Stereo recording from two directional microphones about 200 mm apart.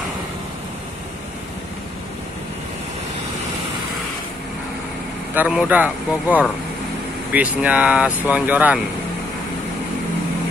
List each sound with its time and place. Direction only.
5.3 s speech: 5° right (ahead or behind)